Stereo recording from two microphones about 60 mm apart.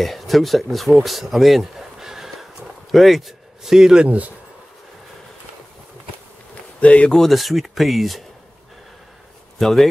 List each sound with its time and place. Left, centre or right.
0.0 s speech: centre
6.8 s speech: left
7.2 s speech: centre
9.6 s speech: centre